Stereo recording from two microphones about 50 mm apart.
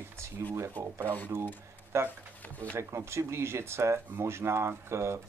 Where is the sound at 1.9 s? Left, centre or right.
Right.